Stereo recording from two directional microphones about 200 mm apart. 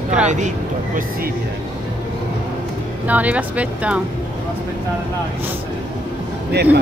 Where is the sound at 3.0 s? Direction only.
5° right (ahead or behind).